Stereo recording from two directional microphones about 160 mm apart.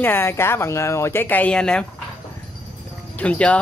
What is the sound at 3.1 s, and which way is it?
Speech, 10° left (ahead or behind).